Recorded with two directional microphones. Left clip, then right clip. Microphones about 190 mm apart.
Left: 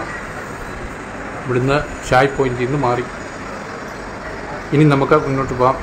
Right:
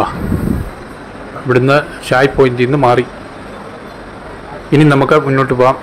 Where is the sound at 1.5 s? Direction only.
30° right (ahead or behind).